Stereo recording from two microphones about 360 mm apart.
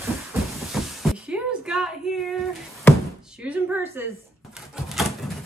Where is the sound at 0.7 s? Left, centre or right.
Centre.